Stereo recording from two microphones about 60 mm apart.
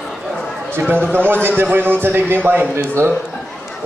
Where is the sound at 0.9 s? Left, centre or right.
Right.